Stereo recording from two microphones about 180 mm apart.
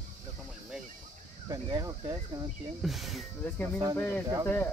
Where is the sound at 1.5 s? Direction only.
20° right (ahead or behind).